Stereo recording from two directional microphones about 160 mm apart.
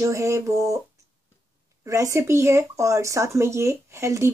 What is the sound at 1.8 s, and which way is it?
Speech, 20° right (ahead or behind).